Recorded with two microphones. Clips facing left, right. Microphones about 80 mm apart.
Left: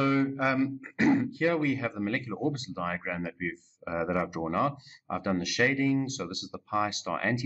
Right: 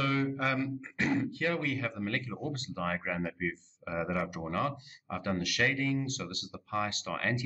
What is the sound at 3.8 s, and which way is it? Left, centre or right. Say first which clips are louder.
Speech: left 4 dB; centre.